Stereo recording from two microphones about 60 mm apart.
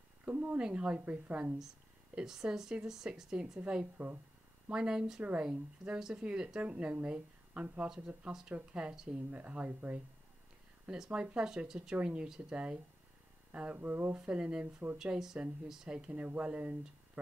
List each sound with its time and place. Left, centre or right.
0.3 s speech: right
2.1 s speech: centre
8.2 s speech: centre
8.9 s speech: centre
9.3 s speech: right
13.7 s speech: right